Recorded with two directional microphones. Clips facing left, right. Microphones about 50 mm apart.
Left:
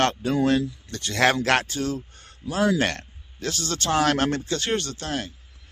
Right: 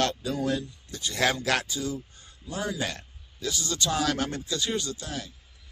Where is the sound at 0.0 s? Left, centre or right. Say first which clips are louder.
Left 6 dB; left.